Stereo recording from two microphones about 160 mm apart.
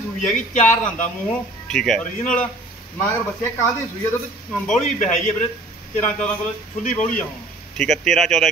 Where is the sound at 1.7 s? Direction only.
5° left (ahead or behind).